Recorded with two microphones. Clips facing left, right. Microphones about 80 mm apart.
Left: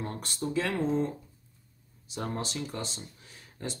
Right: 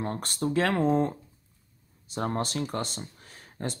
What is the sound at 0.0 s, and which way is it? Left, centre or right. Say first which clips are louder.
Speech: right 5 dB; right.